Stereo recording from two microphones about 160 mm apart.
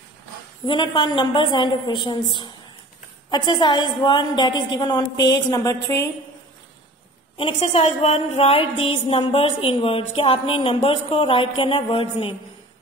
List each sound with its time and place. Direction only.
0.7 s a woman's voice: 30° left (ahead or behind)
7.3 s a woman's voice: 35° left (ahead or behind)